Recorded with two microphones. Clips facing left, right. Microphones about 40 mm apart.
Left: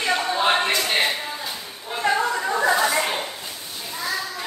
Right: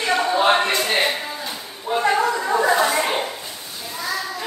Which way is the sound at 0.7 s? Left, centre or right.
Centre.